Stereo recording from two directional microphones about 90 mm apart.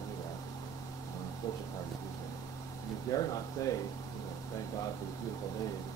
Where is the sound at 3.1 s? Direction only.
45° left (ahead or behind).